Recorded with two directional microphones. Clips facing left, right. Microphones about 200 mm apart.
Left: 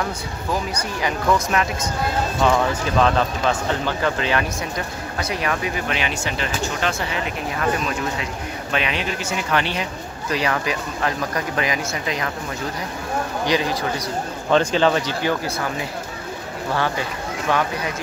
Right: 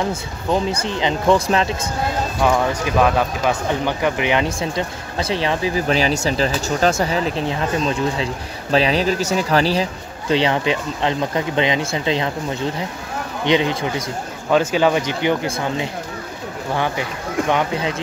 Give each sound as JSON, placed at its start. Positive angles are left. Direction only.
{"t": 0.1, "sound": "speech", "side_deg": -25}
{"t": 3.0, "sound": "speech", "side_deg": -10}
{"t": 13.5, "sound": "speech", "side_deg": -25}
{"t": 14.5, "sound": "speech", "side_deg": -5}
{"t": 16.7, "sound": "speech", "side_deg": -15}